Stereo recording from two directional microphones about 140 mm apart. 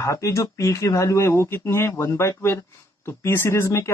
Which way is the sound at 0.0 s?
20° left (ahead or behind).